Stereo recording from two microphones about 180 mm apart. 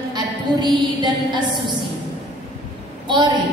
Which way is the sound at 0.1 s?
20° right (ahead or behind).